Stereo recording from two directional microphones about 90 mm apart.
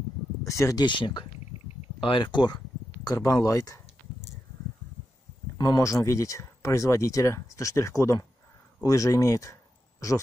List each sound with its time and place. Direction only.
0.4 s speech: 35° left (ahead or behind)
0.8 s speech: 60° left (ahead or behind); by 3.8 s 40° left (ahead or behind)
5.6 s speech: 40° left (ahead or behind)